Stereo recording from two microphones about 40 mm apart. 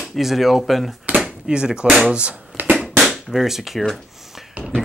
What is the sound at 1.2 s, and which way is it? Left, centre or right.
Speech, right.